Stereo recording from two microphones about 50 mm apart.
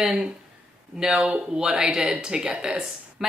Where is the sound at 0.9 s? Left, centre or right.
Centre.